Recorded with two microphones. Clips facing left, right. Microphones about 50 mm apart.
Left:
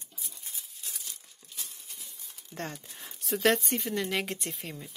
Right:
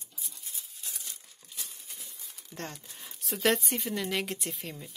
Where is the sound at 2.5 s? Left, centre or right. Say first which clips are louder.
Left 3 dB; centre.